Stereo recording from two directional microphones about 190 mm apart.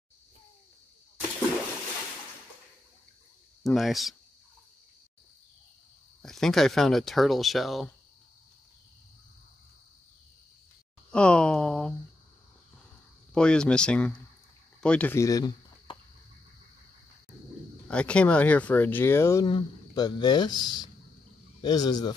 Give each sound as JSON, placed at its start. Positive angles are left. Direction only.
{"t": 3.6, "sound": "speech", "side_deg": 0}
{"t": 6.2, "sound": "speech", "side_deg": 0}
{"t": 11.1, "sound": "a sound", "side_deg": 5}
{"t": 13.3, "sound": "speech", "side_deg": 5}
{"t": 17.8, "sound": "speech", "side_deg": 5}